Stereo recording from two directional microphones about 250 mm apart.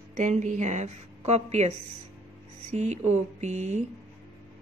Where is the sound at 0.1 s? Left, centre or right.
Right.